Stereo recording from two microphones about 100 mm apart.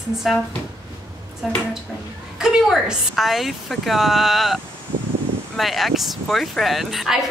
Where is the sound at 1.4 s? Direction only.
Centre (ahead or behind).